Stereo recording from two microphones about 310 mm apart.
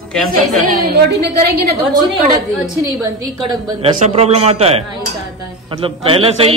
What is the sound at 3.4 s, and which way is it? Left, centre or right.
A man's voice, centre.